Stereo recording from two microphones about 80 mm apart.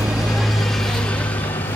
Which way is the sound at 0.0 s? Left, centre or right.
Centre.